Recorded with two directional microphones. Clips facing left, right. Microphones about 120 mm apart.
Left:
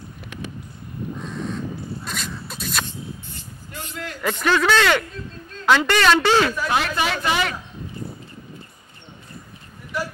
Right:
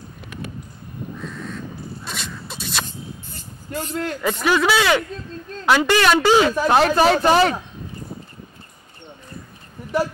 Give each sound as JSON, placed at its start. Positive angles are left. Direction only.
{"t": 2.0, "sound": "a sound", "side_deg": 0}
{"t": 3.7, "sound": "speech", "side_deg": -40}
{"t": 4.2, "sound": "speech", "side_deg": -10}
{"t": 6.5, "sound": "speech", "side_deg": -35}